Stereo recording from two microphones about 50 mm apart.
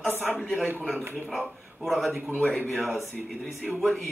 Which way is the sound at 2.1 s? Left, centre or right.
Right.